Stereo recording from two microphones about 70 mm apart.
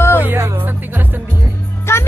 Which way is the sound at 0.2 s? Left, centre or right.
Right.